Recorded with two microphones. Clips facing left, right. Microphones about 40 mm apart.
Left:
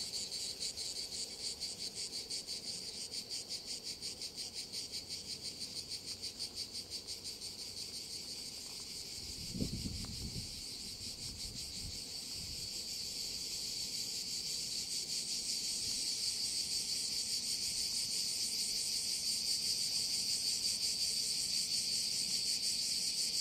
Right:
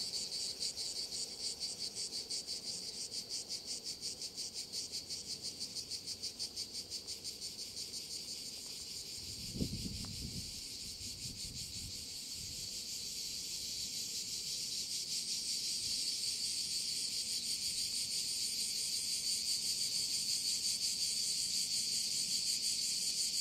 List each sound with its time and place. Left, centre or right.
15.3 s cricket: right
16.3 s insect: right